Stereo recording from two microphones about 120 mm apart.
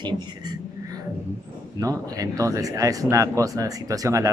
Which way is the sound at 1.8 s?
25° right (ahead or behind).